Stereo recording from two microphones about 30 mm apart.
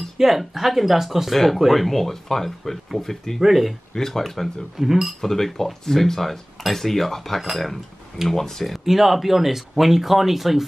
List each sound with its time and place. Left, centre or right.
0.4 s speech: centre
1.3 s speech: centre
3.3 s speech: centre
3.9 s speech: centre
4.7 s speech: centre
5.2 s speech: centre
7.3 s speech: centre
8.3 s speech: centre
8.7 s speech: centre